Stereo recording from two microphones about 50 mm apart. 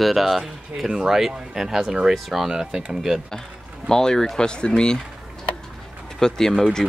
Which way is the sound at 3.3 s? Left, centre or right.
Centre.